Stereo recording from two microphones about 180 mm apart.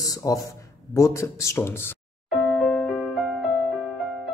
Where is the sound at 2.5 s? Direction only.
Centre (ahead or behind).